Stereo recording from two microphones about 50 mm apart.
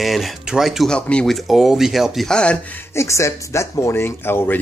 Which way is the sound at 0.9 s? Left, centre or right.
Centre.